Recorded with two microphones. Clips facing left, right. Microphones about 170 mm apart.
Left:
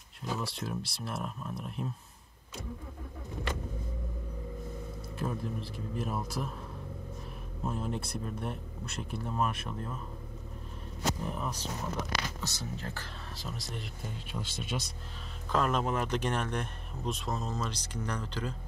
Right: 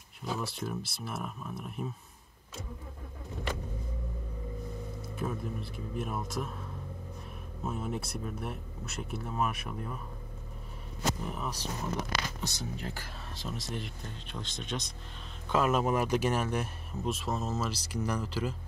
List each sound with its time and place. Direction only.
0.4 s speech: centre (ahead or behind)
5.1 s speech: centre (ahead or behind)
7.6 s speech: 5° right (ahead or behind)
11.2 s speech: centre (ahead or behind)
12.4 s speech: 15° right (ahead or behind)
13.4 s speech: centre (ahead or behind)
15.5 s speech: 5° right (ahead or behind)